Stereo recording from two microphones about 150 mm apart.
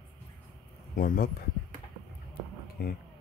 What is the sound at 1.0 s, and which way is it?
Speech, 70° left (ahead or behind).